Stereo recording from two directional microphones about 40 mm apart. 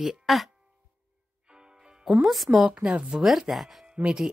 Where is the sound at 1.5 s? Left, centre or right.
Right.